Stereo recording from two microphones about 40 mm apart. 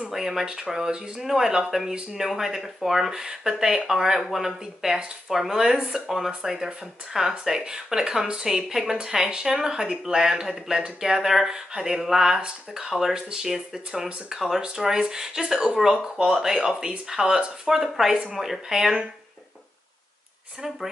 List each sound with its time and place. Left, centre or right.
0.1 s speech: centre
17.6 s speech: centre